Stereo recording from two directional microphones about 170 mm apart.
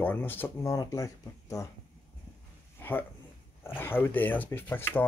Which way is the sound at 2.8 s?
10° left (ahead or behind).